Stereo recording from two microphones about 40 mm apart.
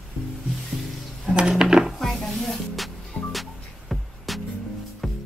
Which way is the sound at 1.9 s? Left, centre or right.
Centre.